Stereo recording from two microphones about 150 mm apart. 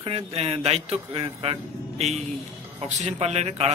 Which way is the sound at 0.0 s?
40° right (ahead or behind).